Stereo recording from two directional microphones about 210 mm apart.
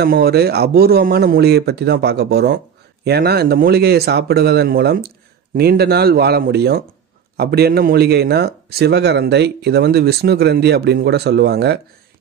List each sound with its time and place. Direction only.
0.0 s speech: 50° right (ahead or behind)